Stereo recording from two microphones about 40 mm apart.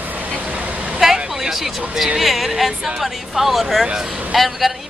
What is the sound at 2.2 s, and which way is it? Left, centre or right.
Speech, centre.